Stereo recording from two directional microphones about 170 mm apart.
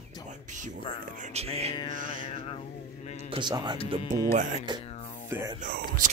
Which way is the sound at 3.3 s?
25° right (ahead or behind).